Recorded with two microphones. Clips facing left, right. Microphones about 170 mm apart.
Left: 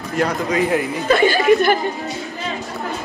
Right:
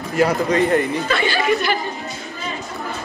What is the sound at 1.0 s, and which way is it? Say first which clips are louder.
Speech: left 5 dB; 40° left (ahead or behind).